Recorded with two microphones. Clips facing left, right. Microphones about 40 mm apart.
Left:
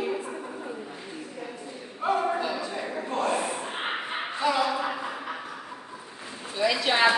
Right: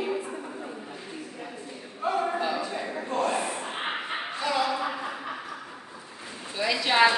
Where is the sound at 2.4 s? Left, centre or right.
Centre.